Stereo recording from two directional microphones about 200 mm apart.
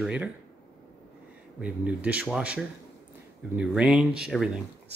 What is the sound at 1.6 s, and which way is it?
Speech, 5° right (ahead or behind).